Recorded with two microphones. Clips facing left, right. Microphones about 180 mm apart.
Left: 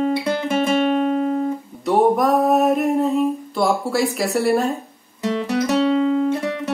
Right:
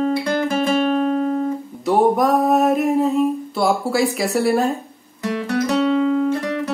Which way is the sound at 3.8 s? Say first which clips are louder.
Right 1 dB; centre (ahead or behind).